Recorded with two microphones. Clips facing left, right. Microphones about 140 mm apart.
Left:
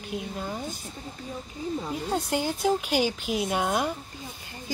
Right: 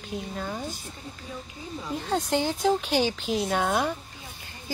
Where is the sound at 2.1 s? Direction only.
10° left (ahead or behind).